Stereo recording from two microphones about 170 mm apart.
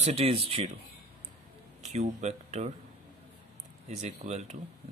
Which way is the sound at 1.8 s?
45° right (ahead or behind).